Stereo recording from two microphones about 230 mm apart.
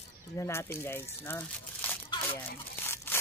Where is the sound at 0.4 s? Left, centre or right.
Centre.